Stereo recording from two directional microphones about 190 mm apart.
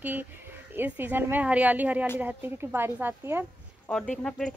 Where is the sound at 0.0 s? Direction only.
10° right (ahead or behind).